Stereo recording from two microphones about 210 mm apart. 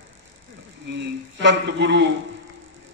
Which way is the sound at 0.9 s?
55° right (ahead or behind).